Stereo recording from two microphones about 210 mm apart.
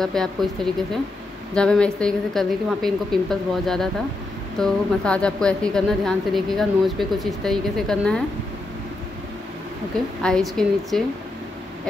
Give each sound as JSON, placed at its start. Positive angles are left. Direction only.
{"t": 0.0, "sound": "a woman's voice", "side_deg": 0}
{"t": 1.5, "sound": "a woman's voice", "side_deg": 5}
{"t": 10.2, "sound": "a woman's voice", "side_deg": 0}